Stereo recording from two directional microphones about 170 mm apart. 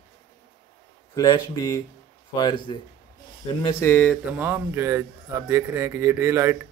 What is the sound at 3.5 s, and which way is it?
Speech, 15° left (ahead or behind).